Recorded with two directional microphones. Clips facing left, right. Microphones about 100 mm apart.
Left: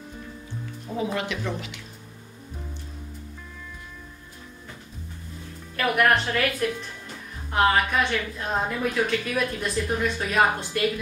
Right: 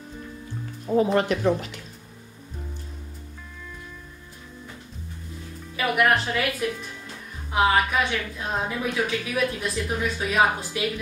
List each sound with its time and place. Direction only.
0.9 s speech: 45° right (ahead or behind)
5.8 s a woman's voice: centre (ahead or behind)